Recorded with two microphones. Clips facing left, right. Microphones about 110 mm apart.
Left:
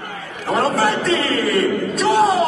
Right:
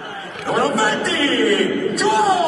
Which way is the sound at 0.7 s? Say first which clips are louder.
Left 1 dB; centre (ahead or behind).